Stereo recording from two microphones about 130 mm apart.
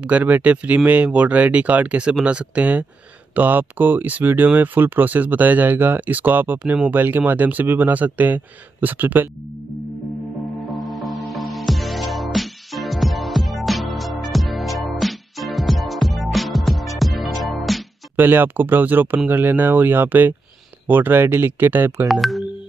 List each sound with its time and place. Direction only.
0.0 s speech: 10° right (ahead or behind)
10.7 s music: centre (ahead or behind)
18.1 s speech: 15° right (ahead or behind)
22.0 s speech: centre (ahead or behind)